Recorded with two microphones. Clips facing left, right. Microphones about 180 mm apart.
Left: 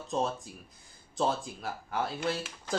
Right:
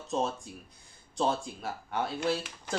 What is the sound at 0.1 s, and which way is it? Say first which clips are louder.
Speech: even; centre (ahead or behind).